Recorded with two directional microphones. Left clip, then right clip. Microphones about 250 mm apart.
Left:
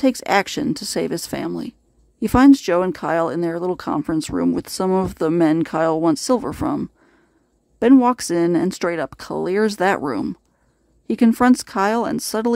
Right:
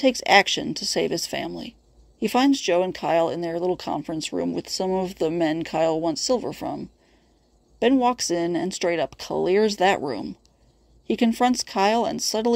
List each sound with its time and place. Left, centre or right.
0.3 s speech: centre
8.0 s speech: centre